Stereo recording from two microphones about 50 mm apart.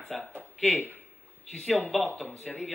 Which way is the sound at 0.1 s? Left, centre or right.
Centre.